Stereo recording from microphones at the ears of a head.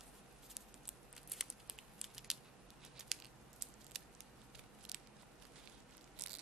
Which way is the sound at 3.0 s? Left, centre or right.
Right.